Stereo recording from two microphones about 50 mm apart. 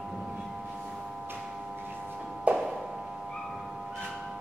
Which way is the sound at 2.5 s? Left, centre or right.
Right.